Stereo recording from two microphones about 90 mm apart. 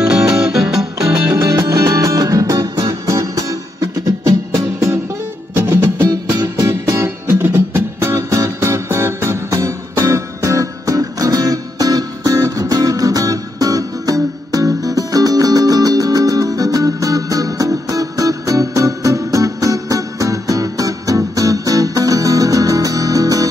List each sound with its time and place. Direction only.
0.0 s music: 10° right (ahead or behind)
1.3 s music: 35° right (ahead or behind)
6.0 s music: 45° right (ahead or behind)
6.7 s music: 30° right (ahead or behind)